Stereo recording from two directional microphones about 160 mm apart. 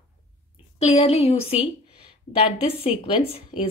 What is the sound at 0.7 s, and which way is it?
A woman's voice, 35° left (ahead or behind).